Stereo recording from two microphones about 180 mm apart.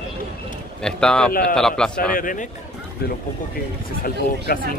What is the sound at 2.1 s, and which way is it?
Speech, 50° left (ahead or behind).